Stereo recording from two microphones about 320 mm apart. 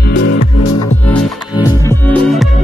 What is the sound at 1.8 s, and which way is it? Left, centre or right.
Music, centre.